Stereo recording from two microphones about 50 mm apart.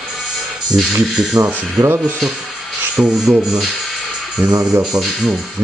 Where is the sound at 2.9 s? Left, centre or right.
Centre.